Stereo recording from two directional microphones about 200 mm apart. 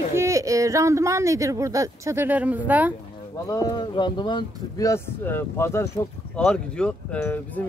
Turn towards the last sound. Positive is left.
turn(degrees=10)  # may be behind; listen again after turning